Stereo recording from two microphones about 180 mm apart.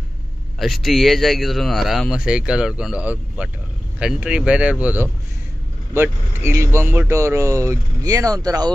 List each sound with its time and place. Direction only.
0.6 s speech: centre (ahead or behind); by 8.7 s 20° right (ahead or behind)